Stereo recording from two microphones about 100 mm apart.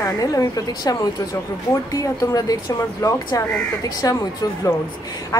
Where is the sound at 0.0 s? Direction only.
35° left (ahead or behind).